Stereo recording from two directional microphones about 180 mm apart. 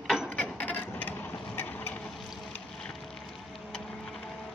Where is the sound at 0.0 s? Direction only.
Centre (ahead or behind).